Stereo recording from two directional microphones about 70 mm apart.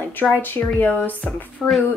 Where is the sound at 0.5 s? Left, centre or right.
Left.